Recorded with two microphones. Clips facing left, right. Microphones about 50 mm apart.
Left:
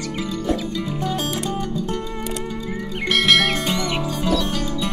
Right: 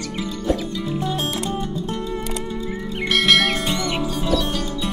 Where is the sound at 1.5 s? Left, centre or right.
Left.